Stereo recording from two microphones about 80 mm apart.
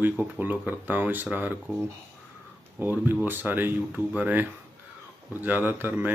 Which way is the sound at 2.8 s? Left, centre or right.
Right.